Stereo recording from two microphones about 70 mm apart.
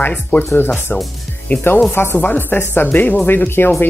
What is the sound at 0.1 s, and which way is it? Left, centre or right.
Speech, left.